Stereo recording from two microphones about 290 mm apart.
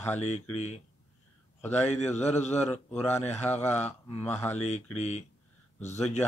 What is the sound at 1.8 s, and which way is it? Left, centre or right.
Speech, left.